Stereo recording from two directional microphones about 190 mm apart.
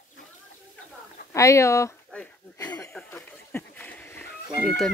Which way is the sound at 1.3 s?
15° left (ahead or behind).